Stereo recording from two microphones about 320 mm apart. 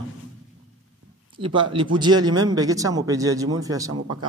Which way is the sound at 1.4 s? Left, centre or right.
Centre.